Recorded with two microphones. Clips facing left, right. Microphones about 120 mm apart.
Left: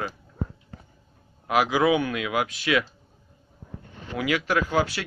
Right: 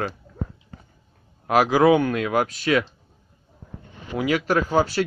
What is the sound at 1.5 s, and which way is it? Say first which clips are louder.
Speech: right 5 dB; 40° right (ahead or behind).